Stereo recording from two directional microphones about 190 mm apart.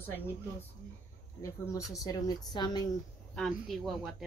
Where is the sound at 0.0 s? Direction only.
10° left (ahead or behind).